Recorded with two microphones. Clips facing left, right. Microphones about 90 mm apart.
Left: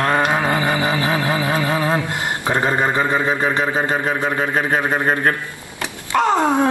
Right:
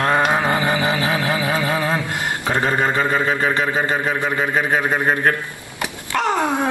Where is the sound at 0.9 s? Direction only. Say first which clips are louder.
Left 1 dB; 25° left (ahead or behind).